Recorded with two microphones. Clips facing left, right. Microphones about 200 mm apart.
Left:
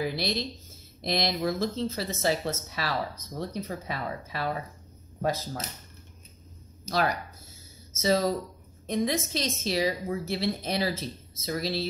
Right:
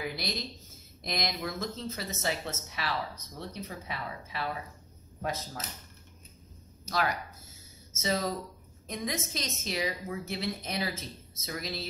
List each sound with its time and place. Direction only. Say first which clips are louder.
0.0 s speech: left 6 dB; 30° left (ahead or behind)
8.0 s speech: left 6 dB; 35° left (ahead or behind)